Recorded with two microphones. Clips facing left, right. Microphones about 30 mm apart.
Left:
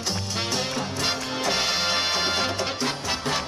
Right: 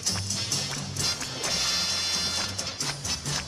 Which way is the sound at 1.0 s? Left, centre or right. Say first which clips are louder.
Left 4 dB; left.